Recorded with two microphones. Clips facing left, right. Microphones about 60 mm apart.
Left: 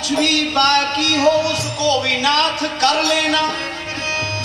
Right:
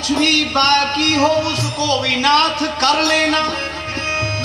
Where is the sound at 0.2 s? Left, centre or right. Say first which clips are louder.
Even; right.